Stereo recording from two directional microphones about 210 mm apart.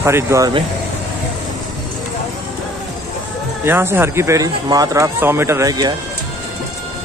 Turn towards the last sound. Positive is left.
turn(degrees=-20)  # may be behind; listen again after turning